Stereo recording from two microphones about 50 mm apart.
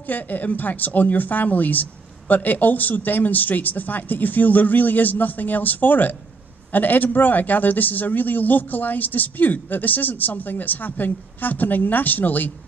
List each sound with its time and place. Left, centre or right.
0.0 s a woman's voice: left